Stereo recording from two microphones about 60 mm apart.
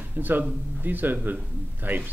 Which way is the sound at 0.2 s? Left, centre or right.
Right.